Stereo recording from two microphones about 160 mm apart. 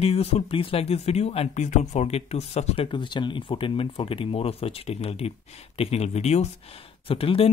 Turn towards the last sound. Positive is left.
turn(degrees=35)  # may be behind; listen again after turning